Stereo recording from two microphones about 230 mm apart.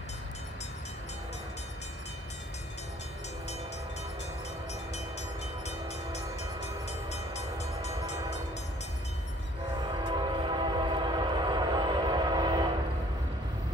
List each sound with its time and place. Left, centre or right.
5.7 s train: left
9.8 s train: centre